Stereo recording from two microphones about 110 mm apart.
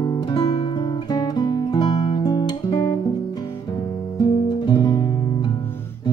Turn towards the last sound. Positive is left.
turn(degrees=45)  # may be behind; listen again after turning